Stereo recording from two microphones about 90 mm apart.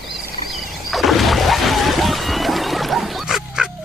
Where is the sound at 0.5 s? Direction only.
Centre (ahead or behind).